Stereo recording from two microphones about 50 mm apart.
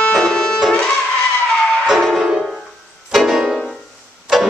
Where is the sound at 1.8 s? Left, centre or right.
Centre.